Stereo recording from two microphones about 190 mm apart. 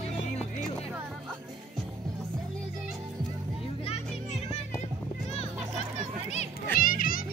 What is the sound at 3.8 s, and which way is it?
Children playing, 35° left (ahead or behind).